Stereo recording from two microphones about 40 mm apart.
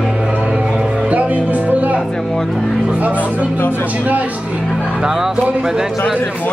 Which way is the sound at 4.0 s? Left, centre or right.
Right.